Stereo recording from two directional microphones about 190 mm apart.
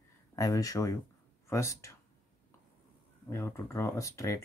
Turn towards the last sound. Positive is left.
turn(degrees=15)  # may be behind; listen again after turning